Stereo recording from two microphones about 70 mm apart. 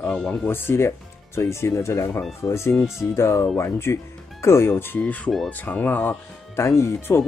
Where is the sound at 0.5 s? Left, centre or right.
Left.